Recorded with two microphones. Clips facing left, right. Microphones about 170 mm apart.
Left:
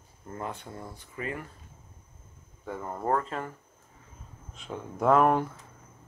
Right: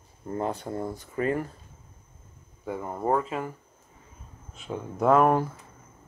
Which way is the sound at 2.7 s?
10° right (ahead or behind).